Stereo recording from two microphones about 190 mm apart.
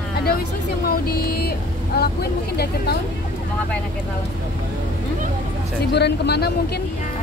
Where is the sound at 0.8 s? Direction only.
50° left (ahead or behind).